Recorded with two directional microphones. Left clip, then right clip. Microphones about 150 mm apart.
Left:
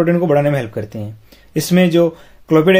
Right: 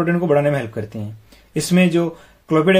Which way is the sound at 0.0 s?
35° left (ahead or behind).